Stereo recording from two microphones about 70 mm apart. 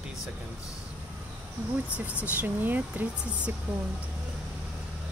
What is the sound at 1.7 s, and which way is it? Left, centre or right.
Speech, right.